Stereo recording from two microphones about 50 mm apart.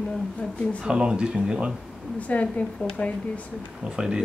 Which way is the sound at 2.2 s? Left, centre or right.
Left.